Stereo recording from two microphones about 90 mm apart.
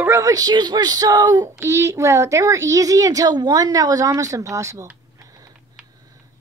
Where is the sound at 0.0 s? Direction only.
35° right (ahead or behind).